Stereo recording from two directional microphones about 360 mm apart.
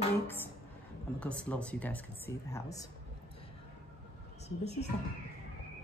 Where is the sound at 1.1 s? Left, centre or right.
Centre.